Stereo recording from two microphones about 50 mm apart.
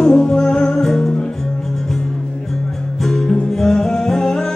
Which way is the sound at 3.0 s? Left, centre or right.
Centre.